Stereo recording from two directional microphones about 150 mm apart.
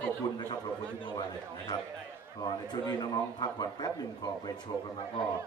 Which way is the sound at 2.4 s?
30° left (ahead or behind).